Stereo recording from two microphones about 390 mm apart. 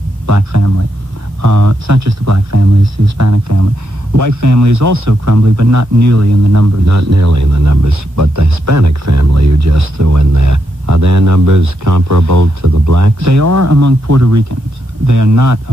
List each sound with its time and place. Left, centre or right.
0.3 s a man's voice: right